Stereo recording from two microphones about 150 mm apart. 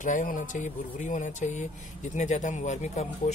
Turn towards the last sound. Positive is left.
turn(degrees=50)  # may be behind; listen again after turning